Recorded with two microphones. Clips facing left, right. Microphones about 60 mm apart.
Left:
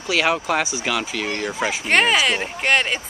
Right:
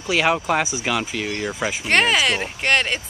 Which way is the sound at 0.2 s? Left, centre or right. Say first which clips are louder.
Right 1 dB; centre.